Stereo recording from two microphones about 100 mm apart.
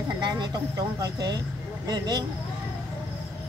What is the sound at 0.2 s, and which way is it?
Speech, 45° right (ahead or behind).